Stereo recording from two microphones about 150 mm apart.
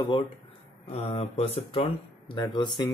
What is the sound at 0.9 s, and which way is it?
Speech, 45° left (ahead or behind).